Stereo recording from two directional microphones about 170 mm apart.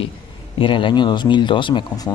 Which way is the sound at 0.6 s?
30° left (ahead or behind).